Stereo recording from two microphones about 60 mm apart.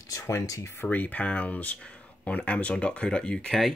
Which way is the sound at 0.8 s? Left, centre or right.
Left.